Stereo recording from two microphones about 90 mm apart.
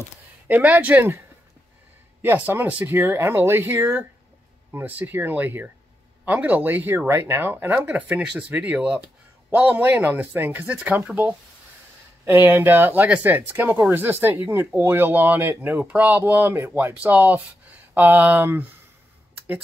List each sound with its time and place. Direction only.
0.5 s speech: 15° right (ahead or behind)
2.2 s speech: 25° right (ahead or behind)
12.3 s speech: 30° right (ahead or behind)